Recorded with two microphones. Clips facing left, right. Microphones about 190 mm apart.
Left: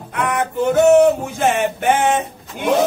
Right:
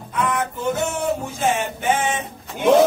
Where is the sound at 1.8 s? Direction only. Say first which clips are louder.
Left 7 dB; 65° left (ahead or behind).